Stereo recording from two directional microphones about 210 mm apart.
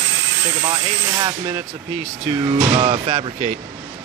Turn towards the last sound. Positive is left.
turn(degrees=-25)  # may be behind; listen again after turning